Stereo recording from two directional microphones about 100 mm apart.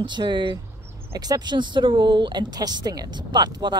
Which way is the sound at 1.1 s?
40° right (ahead or behind).